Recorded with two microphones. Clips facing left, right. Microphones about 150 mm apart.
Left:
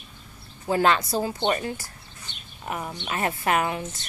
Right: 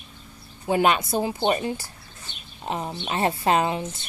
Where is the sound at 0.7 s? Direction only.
20° right (ahead or behind).